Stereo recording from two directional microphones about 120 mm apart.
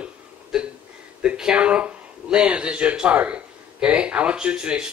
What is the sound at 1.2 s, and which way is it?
Speech, 5° right (ahead or behind).